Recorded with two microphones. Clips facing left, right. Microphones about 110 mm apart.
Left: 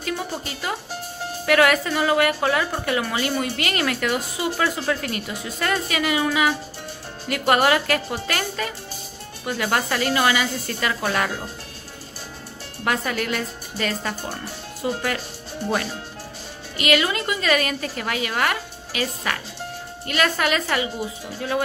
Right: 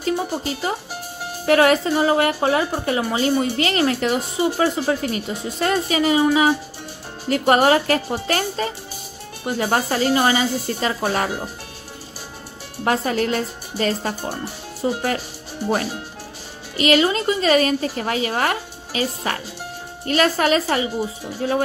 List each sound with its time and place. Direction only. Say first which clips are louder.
0.5 s a woman's voice: right 4 dB; 30° right (ahead or behind)
12.8 s a woman's voice: right 4 dB; 35° right (ahead or behind)
16.7 s a woman's voice: right 4 dB; 30° right (ahead or behind)